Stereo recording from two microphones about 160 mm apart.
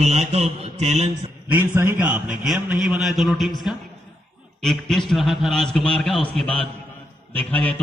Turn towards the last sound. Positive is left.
turn(degrees=10)  # may be behind; listen again after turning